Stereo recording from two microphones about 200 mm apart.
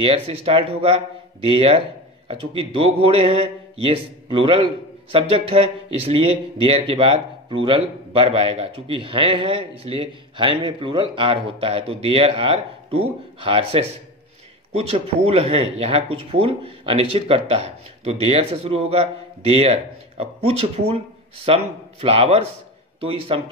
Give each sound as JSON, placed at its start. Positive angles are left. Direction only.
{"t": 0.0, "sound": "a man's voice", "side_deg": -30}